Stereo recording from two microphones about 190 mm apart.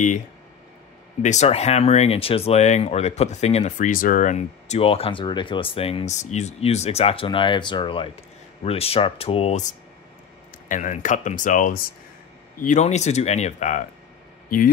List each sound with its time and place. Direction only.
1.2 s speech: 35° left (ahead or behind)
10.7 s speech: 40° left (ahead or behind)